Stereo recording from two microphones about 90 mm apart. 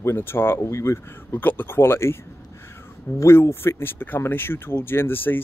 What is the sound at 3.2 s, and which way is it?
Speech, 30° left (ahead or behind).